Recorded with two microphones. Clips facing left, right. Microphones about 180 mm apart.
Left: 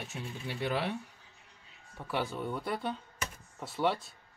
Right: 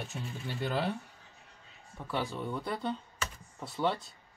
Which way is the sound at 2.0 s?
5° left (ahead or behind).